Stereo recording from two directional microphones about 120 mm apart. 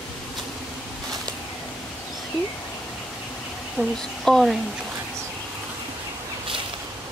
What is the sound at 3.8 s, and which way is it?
Speech, 10° right (ahead or behind).